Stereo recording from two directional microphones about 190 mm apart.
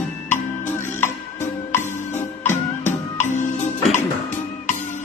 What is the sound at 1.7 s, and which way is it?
Music, 10° left (ahead or behind).